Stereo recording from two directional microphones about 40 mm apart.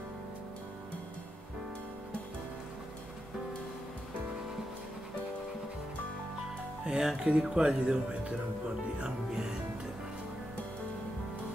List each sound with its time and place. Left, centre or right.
6.8 s speech: centre
9.0 s speech: centre